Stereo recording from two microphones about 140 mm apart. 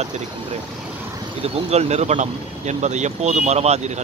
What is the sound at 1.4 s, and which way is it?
Speech, 50° right (ahead or behind).